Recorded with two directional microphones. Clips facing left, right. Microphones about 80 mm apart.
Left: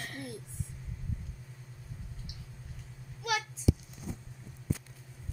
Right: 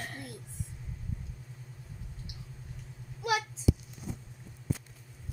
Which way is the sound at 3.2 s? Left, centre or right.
Right.